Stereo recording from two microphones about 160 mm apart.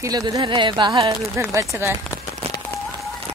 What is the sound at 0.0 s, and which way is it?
Speech, 20° right (ahead or behind).